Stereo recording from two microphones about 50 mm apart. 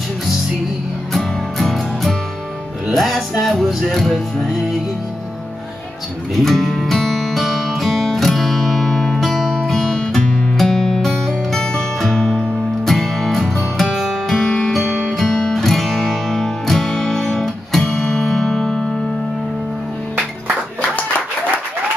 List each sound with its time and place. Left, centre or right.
1.1 s music: centre
6.3 s music: centre
12.8 s music: centre
14.3 s music: centre
14.7 s music: centre